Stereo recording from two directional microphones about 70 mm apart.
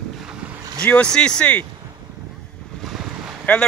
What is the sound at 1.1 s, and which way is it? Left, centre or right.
Speech, centre.